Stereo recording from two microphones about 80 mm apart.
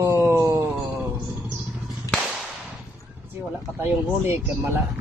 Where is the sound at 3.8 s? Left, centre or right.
Right.